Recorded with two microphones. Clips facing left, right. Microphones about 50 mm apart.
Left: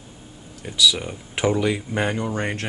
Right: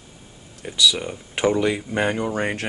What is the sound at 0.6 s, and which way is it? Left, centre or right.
Speech, centre.